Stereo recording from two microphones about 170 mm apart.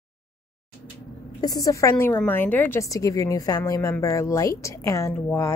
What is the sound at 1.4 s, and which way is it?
A woman's voice, 20° left (ahead or behind).